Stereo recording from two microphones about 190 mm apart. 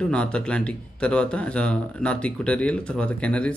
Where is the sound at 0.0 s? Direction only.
5° left (ahead or behind).